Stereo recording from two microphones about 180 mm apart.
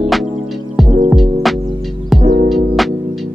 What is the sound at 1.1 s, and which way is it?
Music, centre (ahead or behind).